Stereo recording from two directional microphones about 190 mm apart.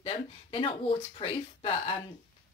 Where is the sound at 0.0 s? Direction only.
30° left (ahead or behind).